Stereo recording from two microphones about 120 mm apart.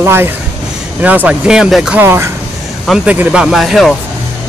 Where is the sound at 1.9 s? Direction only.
20° right (ahead or behind).